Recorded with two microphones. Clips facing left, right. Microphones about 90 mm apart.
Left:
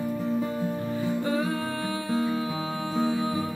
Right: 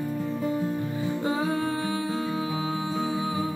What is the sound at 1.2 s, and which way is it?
Music, 25° right (ahead or behind).